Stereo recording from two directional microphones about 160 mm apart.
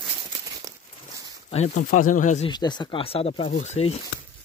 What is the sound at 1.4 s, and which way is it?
Speech, 40° left (ahead or behind).